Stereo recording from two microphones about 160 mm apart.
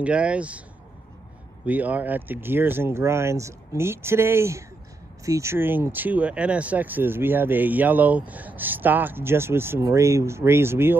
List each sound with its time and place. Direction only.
0.0 s speech: 5° right (ahead or behind)
1.7 s speech: 10° right (ahead or behind)